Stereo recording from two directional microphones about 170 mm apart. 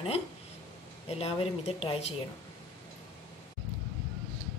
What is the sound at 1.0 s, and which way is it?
Speech, 35° left (ahead or behind).